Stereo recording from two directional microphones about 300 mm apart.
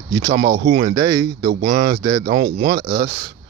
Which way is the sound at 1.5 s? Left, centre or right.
Right.